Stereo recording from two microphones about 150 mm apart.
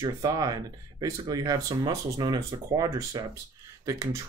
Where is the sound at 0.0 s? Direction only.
25° right (ahead or behind).